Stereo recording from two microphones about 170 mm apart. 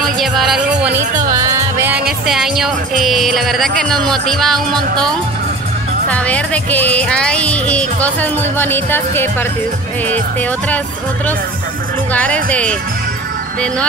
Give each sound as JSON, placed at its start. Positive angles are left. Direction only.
{"t": 0.0, "sound": "music", "side_deg": 0}
{"t": 1.3, "sound": "music", "side_deg": -20}
{"t": 6.0, "sound": "speech", "side_deg": 10}
{"t": 12.1, "sound": "speech", "side_deg": 10}